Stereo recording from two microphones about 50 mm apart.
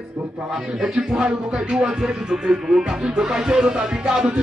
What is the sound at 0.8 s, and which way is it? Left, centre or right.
Music, centre.